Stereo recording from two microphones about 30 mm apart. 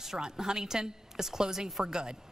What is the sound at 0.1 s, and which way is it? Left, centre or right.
A woman's voice, right.